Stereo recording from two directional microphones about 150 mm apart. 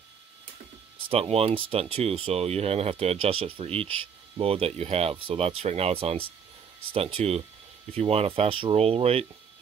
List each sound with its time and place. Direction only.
1.0 s speech: 40° right (ahead or behind)